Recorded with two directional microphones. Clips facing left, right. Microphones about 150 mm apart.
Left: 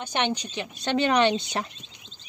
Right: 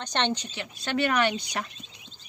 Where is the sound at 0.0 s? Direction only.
10° left (ahead or behind).